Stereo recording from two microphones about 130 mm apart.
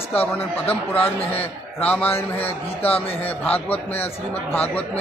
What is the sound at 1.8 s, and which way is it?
Speech, 10° left (ahead or behind).